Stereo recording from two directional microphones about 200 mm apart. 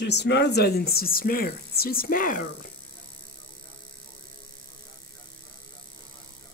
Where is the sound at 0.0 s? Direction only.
60° left (ahead or behind).